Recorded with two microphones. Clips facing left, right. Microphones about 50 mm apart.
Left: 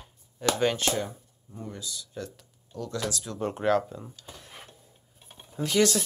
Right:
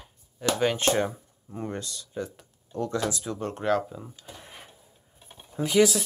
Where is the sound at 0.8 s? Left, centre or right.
Right.